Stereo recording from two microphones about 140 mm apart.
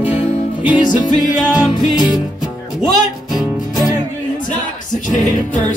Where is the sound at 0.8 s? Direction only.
30° left (ahead or behind).